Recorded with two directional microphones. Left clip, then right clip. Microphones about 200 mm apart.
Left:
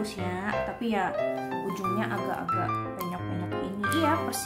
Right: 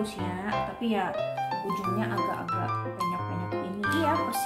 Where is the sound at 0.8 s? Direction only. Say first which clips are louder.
Even; 20° left (ahead or behind).